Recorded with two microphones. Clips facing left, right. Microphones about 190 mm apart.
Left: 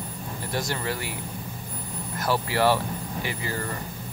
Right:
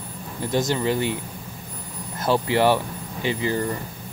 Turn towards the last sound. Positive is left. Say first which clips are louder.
# right 7 dB
turn(degrees=-20)  # may be behind; listen again after turning